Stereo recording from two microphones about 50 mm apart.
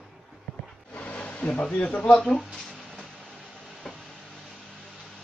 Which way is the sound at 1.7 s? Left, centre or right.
Left.